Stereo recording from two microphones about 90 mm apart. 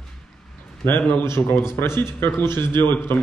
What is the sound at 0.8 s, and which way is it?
Speech, 25° left (ahead or behind).